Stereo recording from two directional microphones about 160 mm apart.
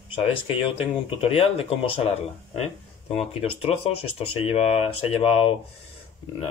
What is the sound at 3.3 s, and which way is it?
Speech, 40° left (ahead or behind).